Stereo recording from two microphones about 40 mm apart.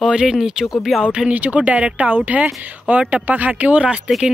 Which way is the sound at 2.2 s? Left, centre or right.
Right.